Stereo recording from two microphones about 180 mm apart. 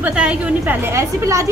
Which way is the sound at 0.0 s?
5° right (ahead or behind).